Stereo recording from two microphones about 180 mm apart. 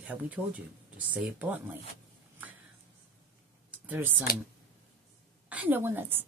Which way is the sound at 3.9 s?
10° right (ahead or behind).